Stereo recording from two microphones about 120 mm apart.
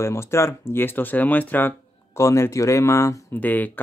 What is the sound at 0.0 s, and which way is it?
Speech, 25° left (ahead or behind).